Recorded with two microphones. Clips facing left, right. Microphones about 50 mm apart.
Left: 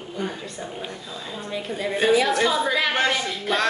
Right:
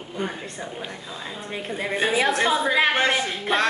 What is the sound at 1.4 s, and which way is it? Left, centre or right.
A woman's voice, right.